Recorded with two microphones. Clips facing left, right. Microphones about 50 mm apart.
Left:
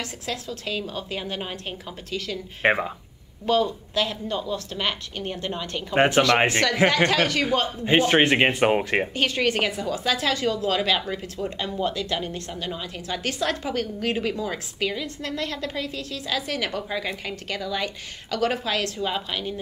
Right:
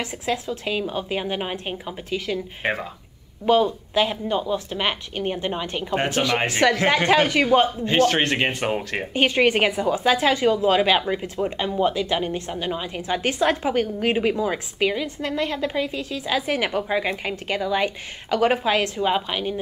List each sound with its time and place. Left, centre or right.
0.0 s a woman's voice: right
2.6 s speech: left
3.4 s a woman's voice: centre
5.9 s speech: left
6.6 s a woman's voice: right
7.8 s speech: centre
9.1 s a woman's voice: right